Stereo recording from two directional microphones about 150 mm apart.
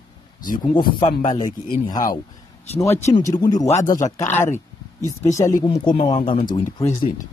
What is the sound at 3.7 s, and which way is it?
Speech, 55° left (ahead or behind).